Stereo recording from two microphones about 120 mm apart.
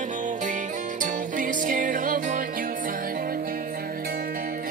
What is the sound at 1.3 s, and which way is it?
Music, 90° right.